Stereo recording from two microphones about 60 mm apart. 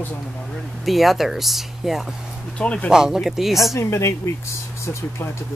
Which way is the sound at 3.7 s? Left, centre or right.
Left.